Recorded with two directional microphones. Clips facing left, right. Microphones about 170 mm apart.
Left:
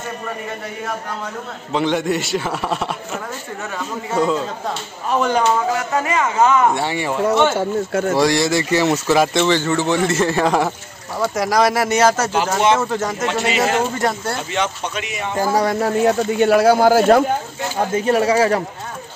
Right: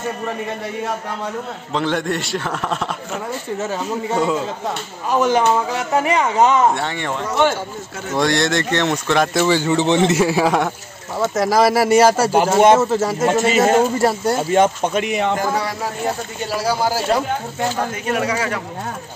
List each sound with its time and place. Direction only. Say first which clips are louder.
1.7 s a man's voice: left 2 dB; 5° left (ahead or behind)
4.1 s a man's voice: left 2 dB; 5° right (ahead or behind)
5.9 s speech: right 3 dB; 25° right (ahead or behind)
6.7 s a man's voice: left 2 dB; 5° left (ahead or behind)
9.4 s a man's voice: right 1 dB; 10° right (ahead or behind)
10.2 s a man's voice: even; 5° right (ahead or behind)
13.3 s speech: right 5 dB; 45° right (ahead or behind)
13.9 s a man's voice: right 4 dB; 10° right (ahead or behind)
14.5 s speech: right 9 dB; 50° right (ahead or behind)
15.5 s speech: left 6 dB; 50° left (ahead or behind)
17.9 s speech: left 6 dB; 30° left (ahead or behind)